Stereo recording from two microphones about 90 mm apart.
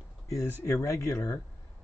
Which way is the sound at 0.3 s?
35° left (ahead or behind).